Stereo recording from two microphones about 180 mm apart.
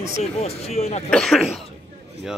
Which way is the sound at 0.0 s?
35° left (ahead or behind).